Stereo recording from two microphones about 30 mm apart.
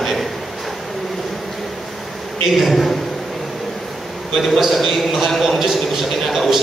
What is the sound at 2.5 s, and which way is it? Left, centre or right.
Speech, centre.